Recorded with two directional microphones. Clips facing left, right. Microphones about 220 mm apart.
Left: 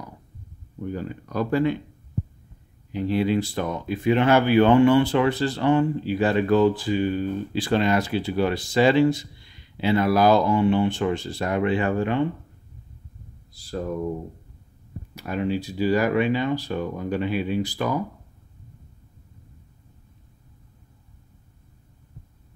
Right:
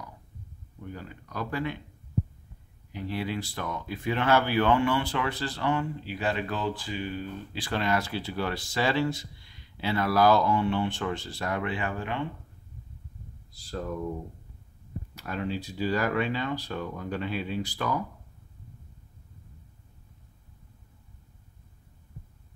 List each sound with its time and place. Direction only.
0.9 s speech: 30° left (ahead or behind)
2.9 s speech: 25° left (ahead or behind)
6.1 s speech: 40° left (ahead or behind)
7.5 s speech: 25° left (ahead or behind)
13.6 s speech: 10° left (ahead or behind)
15.1 s speech: 15° left (ahead or behind)